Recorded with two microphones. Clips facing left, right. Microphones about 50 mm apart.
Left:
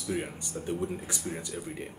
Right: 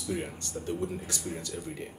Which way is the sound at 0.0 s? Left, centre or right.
Centre.